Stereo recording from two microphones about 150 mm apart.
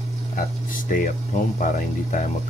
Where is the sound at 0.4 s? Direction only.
65° left (ahead or behind).